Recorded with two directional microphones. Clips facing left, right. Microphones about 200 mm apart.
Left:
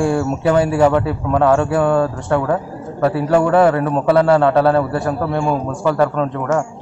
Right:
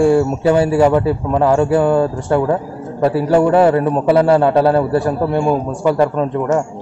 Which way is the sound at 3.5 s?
15° right (ahead or behind).